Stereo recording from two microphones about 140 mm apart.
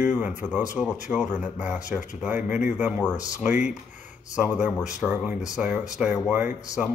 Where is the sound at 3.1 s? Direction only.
25° left (ahead or behind).